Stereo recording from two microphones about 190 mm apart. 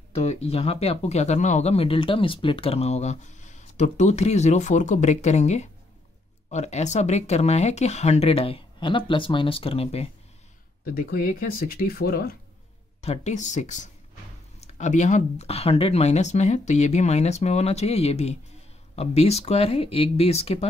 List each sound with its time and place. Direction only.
0.2 s speech: 35° left (ahead or behind)
11.0 s speech: 50° left (ahead or behind)
13.0 s speech: 35° left (ahead or behind)